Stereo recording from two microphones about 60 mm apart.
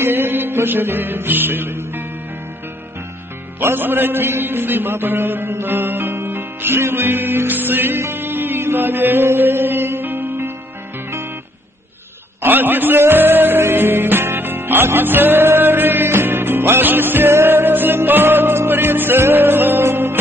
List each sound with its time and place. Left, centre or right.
0.0 s music: right
3.5 s a man's voice: right
8.0 s music: right
12.4 s music: right